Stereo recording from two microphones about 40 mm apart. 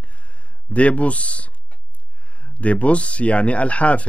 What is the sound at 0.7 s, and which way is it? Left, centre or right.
Speech, left.